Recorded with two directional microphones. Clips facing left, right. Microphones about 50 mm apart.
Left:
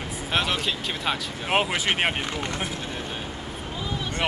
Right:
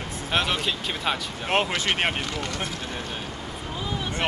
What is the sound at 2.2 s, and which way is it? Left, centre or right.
Speech, left.